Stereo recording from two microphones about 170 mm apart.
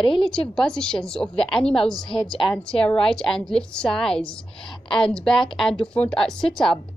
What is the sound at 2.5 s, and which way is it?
A woman's voice, 5° left (ahead or behind).